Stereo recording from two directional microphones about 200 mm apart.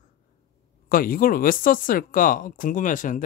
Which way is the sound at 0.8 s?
45° left (ahead or behind).